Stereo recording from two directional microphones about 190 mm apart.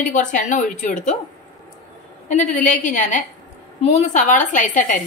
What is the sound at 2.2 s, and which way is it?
A woman's voice, 40° left (ahead or behind).